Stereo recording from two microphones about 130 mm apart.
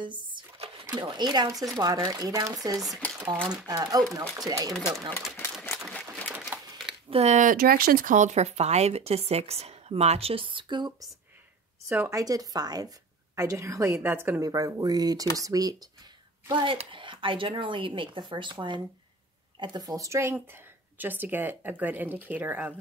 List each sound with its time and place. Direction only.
0.0 s a sound: 40° right (ahead or behind)
0.9 s speech: 35° right (ahead or behind)
4.7 s speech: centre (ahead or behind)
5.9 s a sound: 10° left (ahead or behind)
7.1 s speech: 55° right (ahead or behind); by 10.9 s 40° right (ahead or behind)
11.9 s speech: 20° right (ahead or behind)
14.4 s speech: 30° right (ahead or behind)
16.6 s speech: 40° right (ahead or behind); by 22.8 s 15° right (ahead or behind)